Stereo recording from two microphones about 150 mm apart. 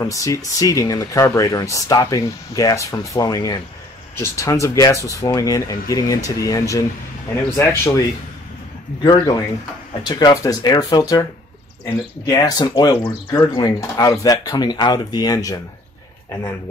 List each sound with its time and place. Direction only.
0.0 s speech: 20° left (ahead or behind)
9.0 s speech: 30° left (ahead or behind)
12.3 s speech: 25° left (ahead or behind)